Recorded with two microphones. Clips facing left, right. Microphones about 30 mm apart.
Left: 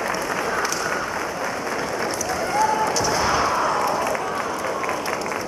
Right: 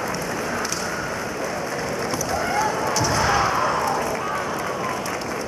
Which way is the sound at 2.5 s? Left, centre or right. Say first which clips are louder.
Left 4 dB; centre.